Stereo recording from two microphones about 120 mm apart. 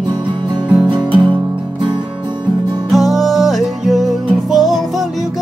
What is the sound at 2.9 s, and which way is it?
Music, centre (ahead or behind).